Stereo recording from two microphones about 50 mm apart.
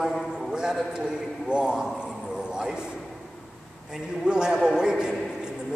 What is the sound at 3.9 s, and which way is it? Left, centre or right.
A man's voice, centre.